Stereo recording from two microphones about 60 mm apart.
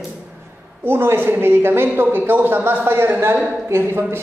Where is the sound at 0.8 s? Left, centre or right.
Right.